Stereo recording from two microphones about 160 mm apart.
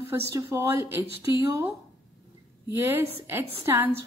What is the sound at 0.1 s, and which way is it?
Speech, 20° right (ahead or behind).